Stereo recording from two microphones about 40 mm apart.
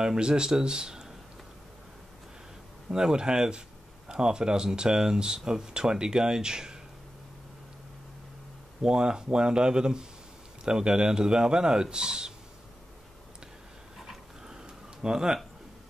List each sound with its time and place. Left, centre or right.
0.0 s speech: centre
2.9 s speech: right
8.8 s speech: centre
14.5 s a sound: centre